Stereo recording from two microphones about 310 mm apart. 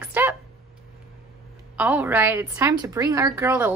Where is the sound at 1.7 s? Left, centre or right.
Centre.